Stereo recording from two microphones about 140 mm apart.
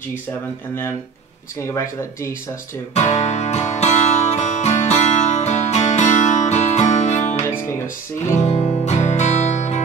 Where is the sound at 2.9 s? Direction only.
55° left (ahead or behind).